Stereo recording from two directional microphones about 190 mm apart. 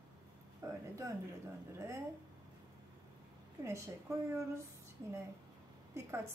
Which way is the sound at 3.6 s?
15° right (ahead or behind).